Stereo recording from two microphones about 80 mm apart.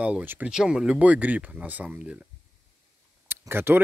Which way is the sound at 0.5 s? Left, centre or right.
Centre.